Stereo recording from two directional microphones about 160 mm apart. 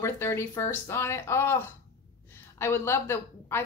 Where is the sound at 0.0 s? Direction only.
15° left (ahead or behind).